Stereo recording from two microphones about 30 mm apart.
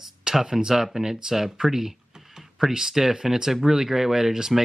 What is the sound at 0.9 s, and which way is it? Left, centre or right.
Speech, centre.